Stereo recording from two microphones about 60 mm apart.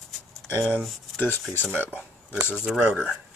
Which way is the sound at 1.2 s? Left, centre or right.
Left.